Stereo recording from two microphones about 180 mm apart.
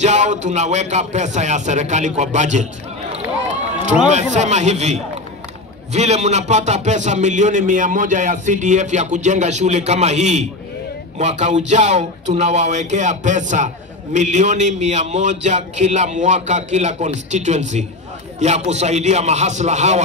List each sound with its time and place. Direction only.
0.0 s a man's voice: 40° right (ahead or behind)
4.0 s a man's voice: 40° right (ahead or behind)